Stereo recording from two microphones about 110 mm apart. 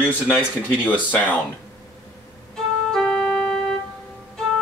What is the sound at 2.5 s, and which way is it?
Organ, 5° left (ahead or behind).